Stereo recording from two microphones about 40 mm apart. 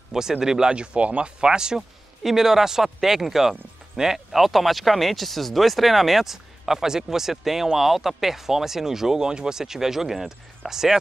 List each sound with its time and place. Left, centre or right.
0.1 s speech: centre; by 1.3 s right
1.4 s speech: centre
1.8 s speech: centre